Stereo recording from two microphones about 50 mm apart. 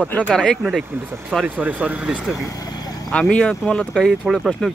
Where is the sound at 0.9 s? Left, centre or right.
Right.